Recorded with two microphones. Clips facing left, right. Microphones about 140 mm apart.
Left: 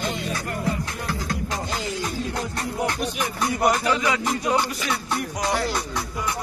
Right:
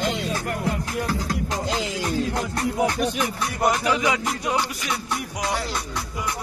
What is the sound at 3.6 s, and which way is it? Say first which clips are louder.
Speech: even; 5° right (ahead or behind).